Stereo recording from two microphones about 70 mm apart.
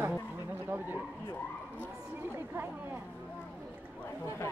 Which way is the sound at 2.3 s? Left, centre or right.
Right.